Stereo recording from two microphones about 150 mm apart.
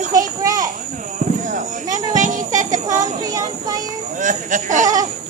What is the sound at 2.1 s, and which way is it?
Music, 55° right (ahead or behind).